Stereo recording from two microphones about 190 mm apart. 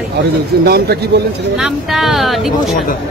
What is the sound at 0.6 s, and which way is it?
Speech, 55° right (ahead or behind).